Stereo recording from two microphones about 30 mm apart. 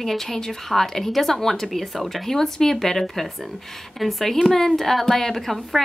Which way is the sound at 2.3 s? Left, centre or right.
Centre.